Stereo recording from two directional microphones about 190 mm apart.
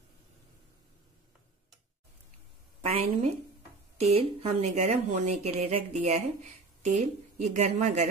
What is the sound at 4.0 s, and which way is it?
Speech, 30° right (ahead or behind).